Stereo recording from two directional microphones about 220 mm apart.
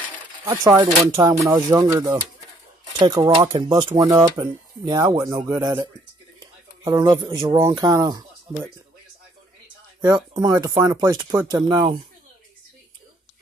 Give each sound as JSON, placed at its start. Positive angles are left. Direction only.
{"t": 0.5, "sound": "speech", "side_deg": -15}
{"t": 10.0, "sound": "speech", "side_deg": -15}